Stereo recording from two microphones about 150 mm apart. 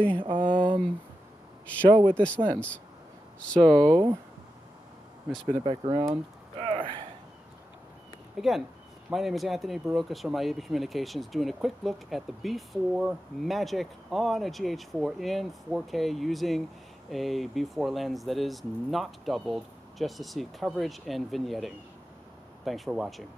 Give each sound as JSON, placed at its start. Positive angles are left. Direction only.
{"t": 0.2, "sound": "speech", "side_deg": -35}
{"t": 1.9, "sound": "speech", "side_deg": -30}
{"t": 2.1, "sound": "speech", "side_deg": 10}
{"t": 3.8, "sound": "speech", "side_deg": -25}
{"t": 5.3, "sound": "speech", "side_deg": 0}
{"t": 5.6, "sound": "speech", "side_deg": -35}
{"t": 6.6, "sound": "a sound", "side_deg": -35}
{"t": 8.4, "sound": "speech", "side_deg": 0}